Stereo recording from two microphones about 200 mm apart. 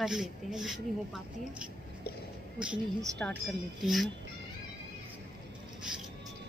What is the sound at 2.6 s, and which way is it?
Speech, centre (ahead or behind).